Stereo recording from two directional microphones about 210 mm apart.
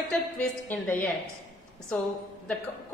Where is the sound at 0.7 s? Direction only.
10° left (ahead or behind).